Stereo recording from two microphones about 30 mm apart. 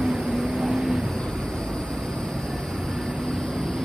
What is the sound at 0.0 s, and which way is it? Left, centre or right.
Vehicle, centre.